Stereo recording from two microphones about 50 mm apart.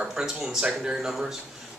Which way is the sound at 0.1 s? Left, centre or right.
Centre.